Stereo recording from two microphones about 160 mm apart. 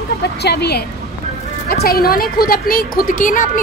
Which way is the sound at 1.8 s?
70° left (ahead or behind).